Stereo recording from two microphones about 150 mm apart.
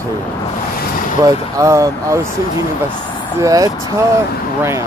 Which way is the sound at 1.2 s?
20° right (ahead or behind).